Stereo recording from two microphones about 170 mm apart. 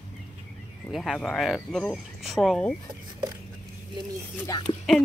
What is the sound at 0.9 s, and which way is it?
Speech, centre (ahead or behind).